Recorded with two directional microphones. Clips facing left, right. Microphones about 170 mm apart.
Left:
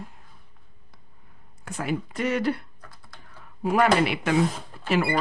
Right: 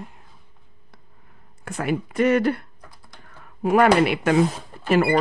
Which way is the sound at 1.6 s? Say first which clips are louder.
Right 4 dB; 60° right (ahead or behind).